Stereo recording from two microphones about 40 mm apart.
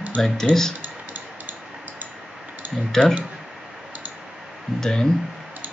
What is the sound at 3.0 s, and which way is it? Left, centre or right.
Speech, left.